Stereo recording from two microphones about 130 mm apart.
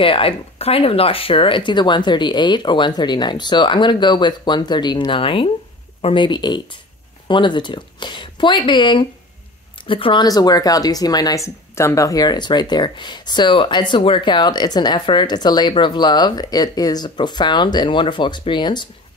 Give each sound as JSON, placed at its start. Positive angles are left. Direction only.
{"t": 0.0, "sound": "speech", "side_deg": 45}
{"t": 10.2, "sound": "speech", "side_deg": 30}